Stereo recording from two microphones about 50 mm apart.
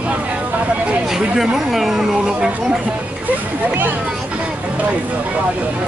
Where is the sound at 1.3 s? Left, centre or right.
Centre.